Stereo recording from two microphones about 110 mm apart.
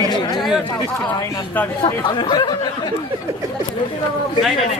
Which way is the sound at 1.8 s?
45° left (ahead or behind).